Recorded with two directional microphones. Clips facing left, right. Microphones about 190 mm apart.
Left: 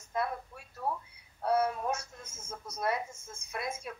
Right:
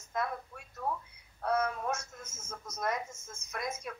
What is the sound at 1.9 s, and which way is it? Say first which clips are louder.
A man's voice: left 1 dB; 30° left (ahead or behind).